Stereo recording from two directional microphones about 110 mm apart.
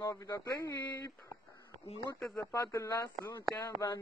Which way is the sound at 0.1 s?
30° left (ahead or behind).